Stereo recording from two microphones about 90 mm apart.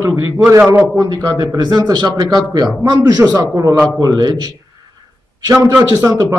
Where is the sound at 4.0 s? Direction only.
45° right (ahead or behind).